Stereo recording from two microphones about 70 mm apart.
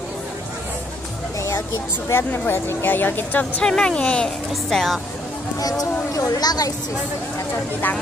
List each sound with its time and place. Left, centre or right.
2.0 s a woman's voice: left
3.6 s speech: centre
4.6 s speech: centre
5.6 s speech: left